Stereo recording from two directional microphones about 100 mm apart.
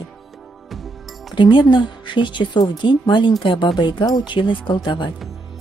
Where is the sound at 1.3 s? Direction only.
50° left (ahead or behind).